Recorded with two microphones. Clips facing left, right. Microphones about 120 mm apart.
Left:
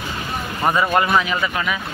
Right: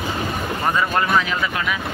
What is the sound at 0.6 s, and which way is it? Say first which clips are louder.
A man's voice: left 3 dB; 10° left (ahead or behind).